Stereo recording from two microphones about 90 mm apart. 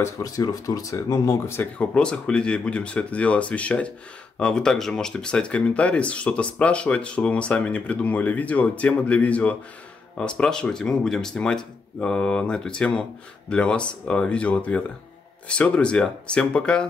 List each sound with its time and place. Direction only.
0.0 s speech: 40° left (ahead or behind)
1.8 s speech: 10° left (ahead or behind)